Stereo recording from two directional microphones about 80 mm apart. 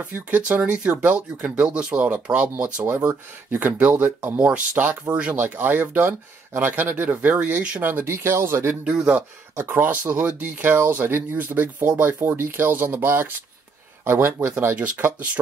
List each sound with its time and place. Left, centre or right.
0.0 s speech: centre; by 8.7 s right
8.8 s speech: centre
9.6 s speech: right